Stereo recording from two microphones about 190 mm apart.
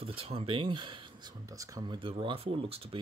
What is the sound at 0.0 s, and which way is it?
Speech, 30° right (ahead or behind).